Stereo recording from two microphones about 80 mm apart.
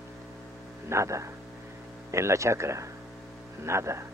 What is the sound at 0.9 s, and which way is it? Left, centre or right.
Speech, right.